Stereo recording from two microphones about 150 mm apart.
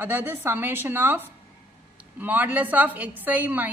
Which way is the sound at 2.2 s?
10° right (ahead or behind).